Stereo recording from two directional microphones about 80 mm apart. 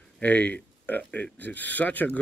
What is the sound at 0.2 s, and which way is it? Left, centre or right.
Speech, centre.